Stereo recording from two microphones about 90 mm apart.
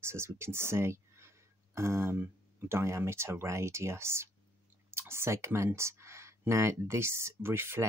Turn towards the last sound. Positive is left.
turn(degrees=-25)  # may be behind; listen again after turning